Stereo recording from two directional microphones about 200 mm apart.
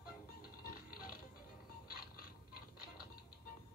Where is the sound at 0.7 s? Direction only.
45° left (ahead or behind).